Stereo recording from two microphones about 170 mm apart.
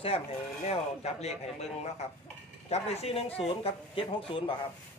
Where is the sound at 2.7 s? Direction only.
40° left (ahead or behind).